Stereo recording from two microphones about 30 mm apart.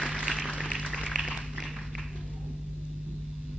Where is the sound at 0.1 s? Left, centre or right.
Right.